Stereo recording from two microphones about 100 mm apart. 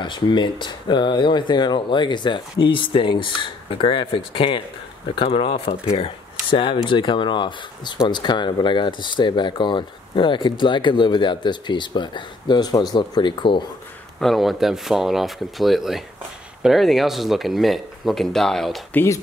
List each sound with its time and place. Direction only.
0.0 s speech: 50° left (ahead or behind)
14.2 s speech: centre (ahead or behind)